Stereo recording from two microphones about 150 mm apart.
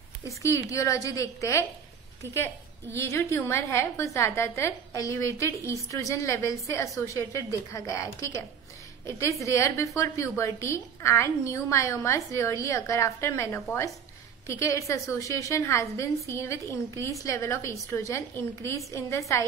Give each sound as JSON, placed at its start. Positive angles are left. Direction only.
{"t": 0.2, "sound": "a woman's voice", "side_deg": 20}